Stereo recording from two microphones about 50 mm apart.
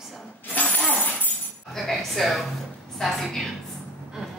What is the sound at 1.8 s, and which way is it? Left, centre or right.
A woman's voice, centre.